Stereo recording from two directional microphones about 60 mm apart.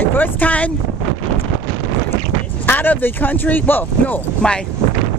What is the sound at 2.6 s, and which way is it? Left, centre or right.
Speech, left.